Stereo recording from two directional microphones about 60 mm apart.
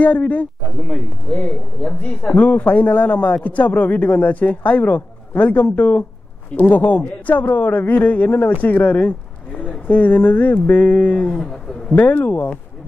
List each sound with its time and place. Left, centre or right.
0.0 s a man's voice: left
11.9 s a man's voice: left